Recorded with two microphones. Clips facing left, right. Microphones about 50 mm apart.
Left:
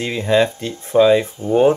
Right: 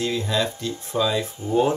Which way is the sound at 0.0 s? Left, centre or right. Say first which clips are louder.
Left 7 dB; left.